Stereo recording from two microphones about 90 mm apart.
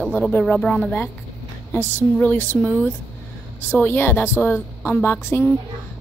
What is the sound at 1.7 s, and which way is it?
Speech, 20° left (ahead or behind).